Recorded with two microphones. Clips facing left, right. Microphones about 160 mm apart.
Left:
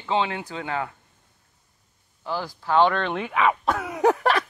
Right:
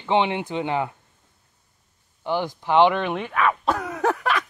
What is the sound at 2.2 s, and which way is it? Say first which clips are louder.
Speech: right 4 dB; 20° right (ahead or behind).